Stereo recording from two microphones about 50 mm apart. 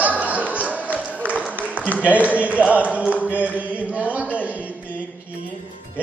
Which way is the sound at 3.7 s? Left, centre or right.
Right.